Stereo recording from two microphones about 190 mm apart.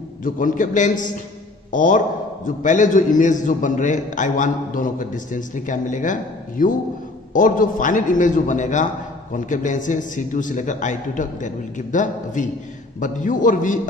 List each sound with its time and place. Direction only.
0.2 s a man's voice: 45° left (ahead or behind)